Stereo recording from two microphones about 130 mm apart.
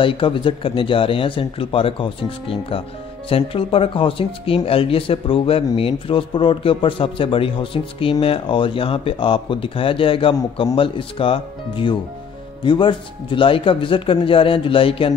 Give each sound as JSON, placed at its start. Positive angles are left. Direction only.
{"t": 0.0, "sound": "a man's voice", "side_deg": 40}